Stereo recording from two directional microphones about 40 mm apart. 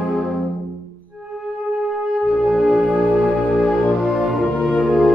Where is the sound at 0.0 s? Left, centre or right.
Centre.